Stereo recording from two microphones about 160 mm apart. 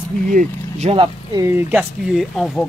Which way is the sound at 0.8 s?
30° right (ahead or behind).